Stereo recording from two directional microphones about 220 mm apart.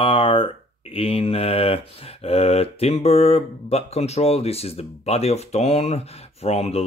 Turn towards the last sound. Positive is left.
turn(degrees=30)  # may be behind; listen again after turning